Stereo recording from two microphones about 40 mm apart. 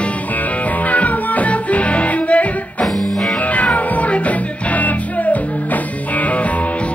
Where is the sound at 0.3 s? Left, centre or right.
Left.